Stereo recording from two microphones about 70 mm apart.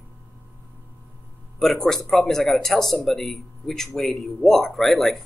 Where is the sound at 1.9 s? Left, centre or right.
Centre.